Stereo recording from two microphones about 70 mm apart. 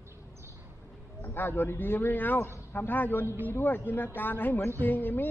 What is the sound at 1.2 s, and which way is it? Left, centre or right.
Speech, left.